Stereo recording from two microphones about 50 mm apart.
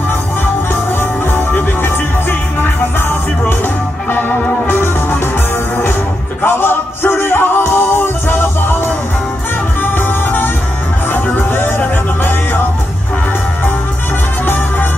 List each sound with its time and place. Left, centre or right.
4.1 s music: left
6.4 s music: left
9.8 s music: left
14.4 s music: left